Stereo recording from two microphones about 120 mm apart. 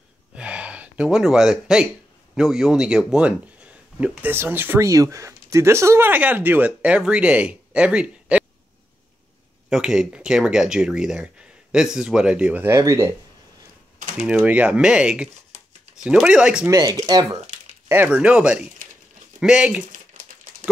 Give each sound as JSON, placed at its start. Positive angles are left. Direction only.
{"t": 0.4, "sound": "gasp", "side_deg": -10}
{"t": 2.3, "sound": "speech", "side_deg": -5}
{"t": 9.7, "sound": "speech", "side_deg": -5}
{"t": 12.6, "sound": "speech", "side_deg": -25}
{"t": 14.1, "sound": "speech", "side_deg": -5}
{"t": 16.6, "sound": "speech", "side_deg": -30}
{"t": 17.8, "sound": "speech", "side_deg": -15}